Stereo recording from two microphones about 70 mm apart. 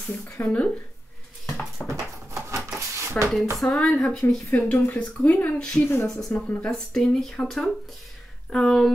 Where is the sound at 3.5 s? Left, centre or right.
Centre.